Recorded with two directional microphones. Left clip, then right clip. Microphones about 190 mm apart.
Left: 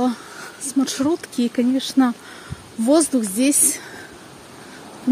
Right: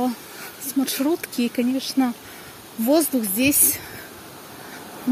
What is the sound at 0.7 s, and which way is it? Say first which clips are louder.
A woman's voice: left 2 dB; 20° left (ahead or behind).